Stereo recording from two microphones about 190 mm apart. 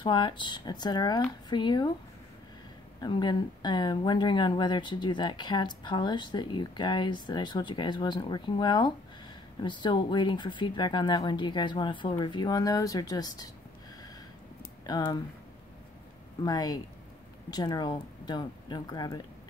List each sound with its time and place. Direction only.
0.0 s speech: 25° left (ahead or behind)
3.0 s speech: 20° left (ahead or behind)
14.9 s speech: 20° left (ahead or behind)
16.4 s speech: 20° left (ahead or behind)